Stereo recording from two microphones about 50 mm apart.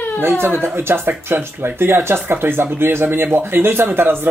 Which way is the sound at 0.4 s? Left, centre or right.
Right.